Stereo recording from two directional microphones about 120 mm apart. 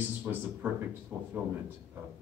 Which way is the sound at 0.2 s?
15° right (ahead or behind).